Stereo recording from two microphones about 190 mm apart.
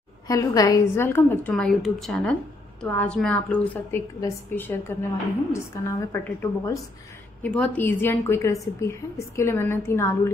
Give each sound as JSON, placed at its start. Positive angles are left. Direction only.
{"t": 0.3, "sound": "a woman's voice", "side_deg": 20}